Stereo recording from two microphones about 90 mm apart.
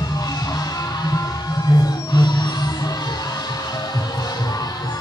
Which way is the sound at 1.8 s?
50° left (ahead or behind).